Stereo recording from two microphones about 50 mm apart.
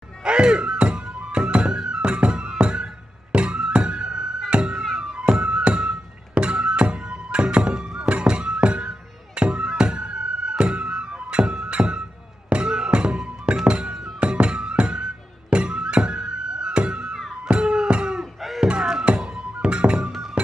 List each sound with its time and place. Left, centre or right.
0.2 s music: centre